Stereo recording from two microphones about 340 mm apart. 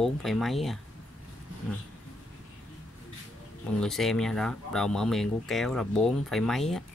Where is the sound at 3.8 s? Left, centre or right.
Centre.